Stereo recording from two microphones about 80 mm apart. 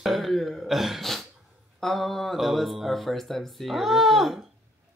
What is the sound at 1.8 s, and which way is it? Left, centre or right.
Speech, centre.